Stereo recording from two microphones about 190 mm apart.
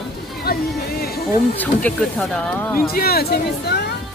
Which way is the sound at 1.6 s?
5° left (ahead or behind).